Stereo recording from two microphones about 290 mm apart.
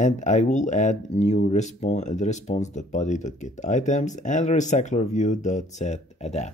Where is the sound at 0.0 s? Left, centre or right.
Left.